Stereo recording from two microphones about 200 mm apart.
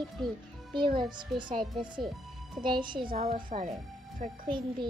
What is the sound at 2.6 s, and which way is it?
Speech, 25° right (ahead or behind).